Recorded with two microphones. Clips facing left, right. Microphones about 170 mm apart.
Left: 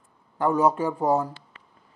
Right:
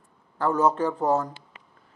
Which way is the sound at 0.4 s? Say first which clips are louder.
Left 1 dB; 10° left (ahead or behind).